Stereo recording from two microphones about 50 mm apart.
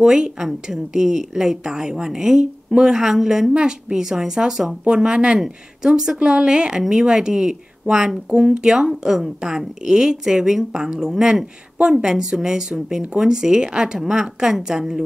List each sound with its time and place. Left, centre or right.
0.0 s a woman's voice: centre